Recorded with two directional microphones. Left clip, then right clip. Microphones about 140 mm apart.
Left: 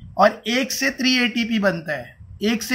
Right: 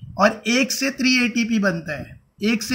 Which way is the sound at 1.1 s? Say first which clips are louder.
Even; 40° right (ahead or behind).